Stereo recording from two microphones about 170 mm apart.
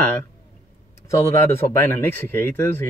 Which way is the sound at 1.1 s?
15° left (ahead or behind).